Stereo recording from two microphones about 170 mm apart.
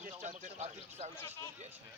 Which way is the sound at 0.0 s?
45° right (ahead or behind).